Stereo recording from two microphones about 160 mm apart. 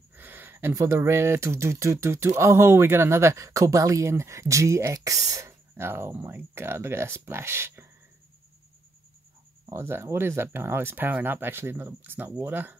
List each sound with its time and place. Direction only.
0.1 s speech: 10° right (ahead or behind)
9.7 s speech: 15° right (ahead or behind)